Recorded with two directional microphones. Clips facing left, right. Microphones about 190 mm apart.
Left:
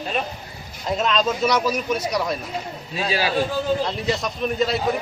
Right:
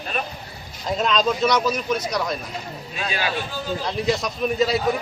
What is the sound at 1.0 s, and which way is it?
A man's voice, centre (ahead or behind).